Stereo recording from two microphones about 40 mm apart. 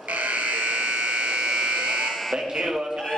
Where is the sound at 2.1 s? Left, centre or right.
Centre.